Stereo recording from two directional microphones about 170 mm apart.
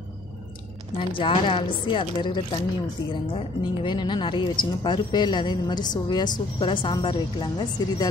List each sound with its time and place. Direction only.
0.9 s speech: 30° left (ahead or behind)